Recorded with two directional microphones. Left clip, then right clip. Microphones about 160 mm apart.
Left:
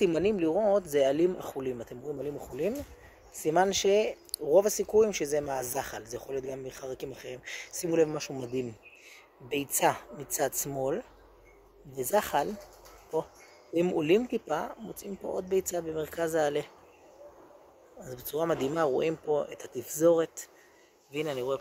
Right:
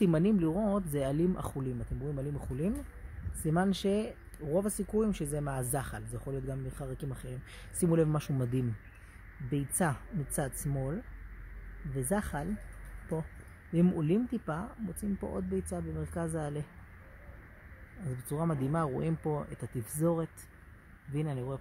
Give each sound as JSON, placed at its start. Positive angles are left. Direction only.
{"t": 0.0, "sound": "speech", "side_deg": -15}
{"t": 3.4, "sound": "speech", "side_deg": -5}
{"t": 7.9, "sound": "speech", "side_deg": -20}
{"t": 9.5, "sound": "speech", "side_deg": 10}
{"t": 12.0, "sound": "speech", "side_deg": 10}
{"t": 13.7, "sound": "speech", "side_deg": 5}
{"t": 18.1, "sound": "speech", "side_deg": 5}